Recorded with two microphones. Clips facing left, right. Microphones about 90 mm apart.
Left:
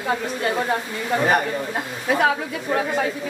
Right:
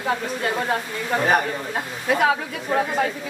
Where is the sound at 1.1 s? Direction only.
5° right (ahead or behind).